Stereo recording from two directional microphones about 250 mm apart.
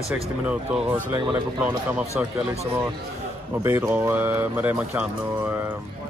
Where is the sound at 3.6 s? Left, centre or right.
Centre.